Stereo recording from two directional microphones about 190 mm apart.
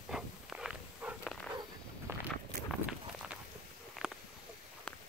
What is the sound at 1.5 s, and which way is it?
Walk, 20° right (ahead or behind).